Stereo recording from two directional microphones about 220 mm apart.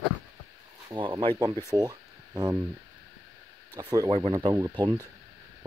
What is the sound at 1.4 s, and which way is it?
Speech, 15° right (ahead or behind).